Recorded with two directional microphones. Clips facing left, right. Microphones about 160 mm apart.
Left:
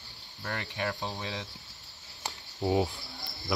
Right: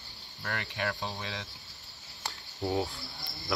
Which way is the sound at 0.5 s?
20° left (ahead or behind).